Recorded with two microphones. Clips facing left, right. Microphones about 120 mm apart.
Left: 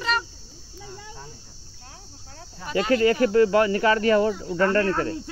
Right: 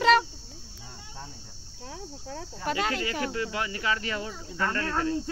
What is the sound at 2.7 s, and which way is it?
Speech, 85° right.